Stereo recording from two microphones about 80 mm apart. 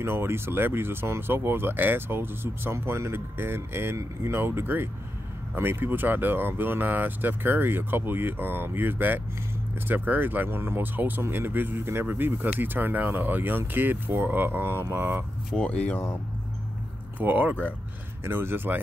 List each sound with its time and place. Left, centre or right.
0.0 s speech: right
15.5 s speech: centre
17.2 s speech: right
18.2 s speech: right